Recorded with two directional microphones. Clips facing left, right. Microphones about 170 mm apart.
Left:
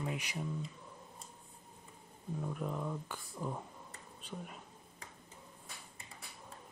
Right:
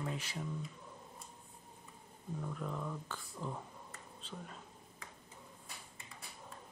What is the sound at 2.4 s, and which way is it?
Speech, 20° left (ahead or behind).